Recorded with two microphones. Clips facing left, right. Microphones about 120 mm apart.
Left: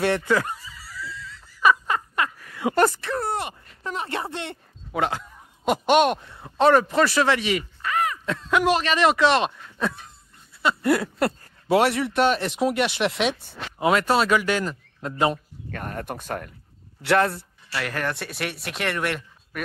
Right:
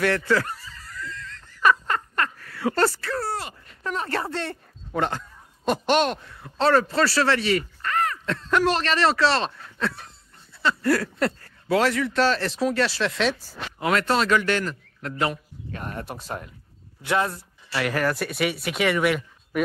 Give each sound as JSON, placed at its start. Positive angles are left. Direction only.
{"t": 0.0, "sound": "laughter", "side_deg": 20}
{"t": 4.9, "sound": "speech", "side_deg": 5}
{"t": 15.0, "sound": "a man's voice", "side_deg": 25}
{"t": 15.7, "sound": "speech", "side_deg": 50}
{"t": 17.0, "sound": "speech", "side_deg": 70}
{"t": 17.7, "sound": "speech", "side_deg": -5}